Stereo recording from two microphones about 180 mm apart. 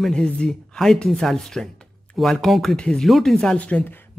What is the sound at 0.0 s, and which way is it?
Speech, 5° left (ahead or behind).